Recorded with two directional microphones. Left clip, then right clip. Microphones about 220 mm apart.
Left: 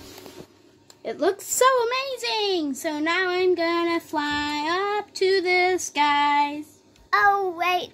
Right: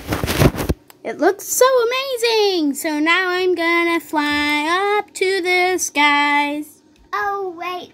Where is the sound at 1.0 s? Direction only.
15° right (ahead or behind).